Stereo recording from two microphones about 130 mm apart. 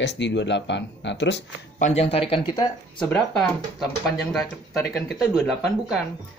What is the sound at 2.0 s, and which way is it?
Speech, 45° left (ahead or behind).